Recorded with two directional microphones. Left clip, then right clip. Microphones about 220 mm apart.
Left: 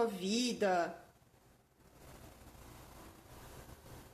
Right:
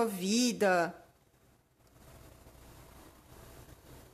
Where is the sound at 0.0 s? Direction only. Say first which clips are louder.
Right 4 dB; 45° right (ahead or behind).